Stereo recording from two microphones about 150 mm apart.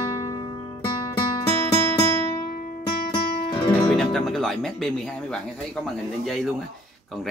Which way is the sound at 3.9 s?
Centre (ahead or behind).